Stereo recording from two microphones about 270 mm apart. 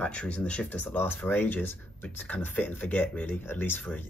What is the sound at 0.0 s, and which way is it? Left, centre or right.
Speech, centre.